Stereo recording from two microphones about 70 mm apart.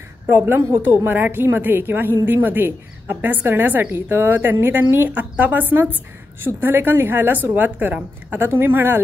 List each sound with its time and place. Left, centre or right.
0.7 s a woman's voice: right